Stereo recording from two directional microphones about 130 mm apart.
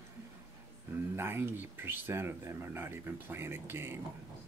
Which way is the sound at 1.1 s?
20° right (ahead or behind).